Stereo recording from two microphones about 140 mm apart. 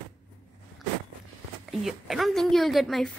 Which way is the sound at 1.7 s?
Centre (ahead or behind).